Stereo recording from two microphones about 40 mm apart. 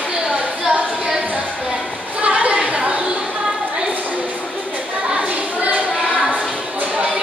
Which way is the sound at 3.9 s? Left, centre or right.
Right.